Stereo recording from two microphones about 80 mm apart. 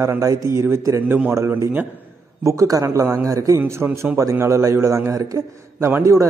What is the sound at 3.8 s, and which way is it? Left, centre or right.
A man's voice, right.